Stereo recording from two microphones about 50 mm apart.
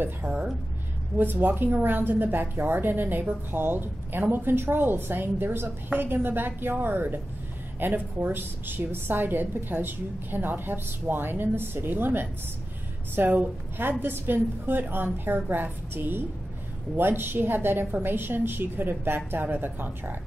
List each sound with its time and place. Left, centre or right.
0.2 s a woman's voice: right
1.1 s a woman's voice: right